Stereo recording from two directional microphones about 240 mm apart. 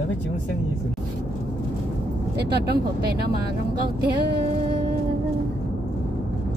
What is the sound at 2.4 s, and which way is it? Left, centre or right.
Speech, right.